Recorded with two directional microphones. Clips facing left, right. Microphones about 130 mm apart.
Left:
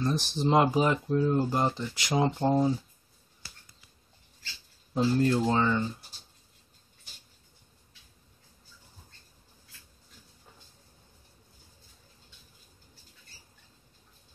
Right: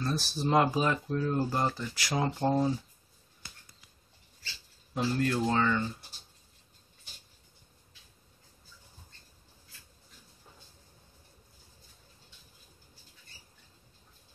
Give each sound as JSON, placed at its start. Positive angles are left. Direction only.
{"t": 0.0, "sound": "speech", "side_deg": 20}
{"t": 4.9, "sound": "speech", "side_deg": 30}